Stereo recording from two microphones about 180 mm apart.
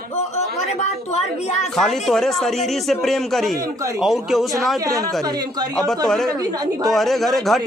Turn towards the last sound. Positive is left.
turn(degrees=0)  # may be behind; listen again after turning